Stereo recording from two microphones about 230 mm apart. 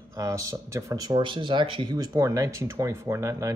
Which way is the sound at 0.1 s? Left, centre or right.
Centre.